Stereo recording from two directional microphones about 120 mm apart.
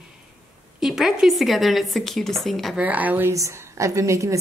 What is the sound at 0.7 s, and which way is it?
A woman's voice, 5° right (ahead or behind).